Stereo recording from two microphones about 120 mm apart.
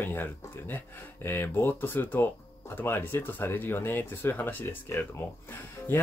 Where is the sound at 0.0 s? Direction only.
15° left (ahead or behind).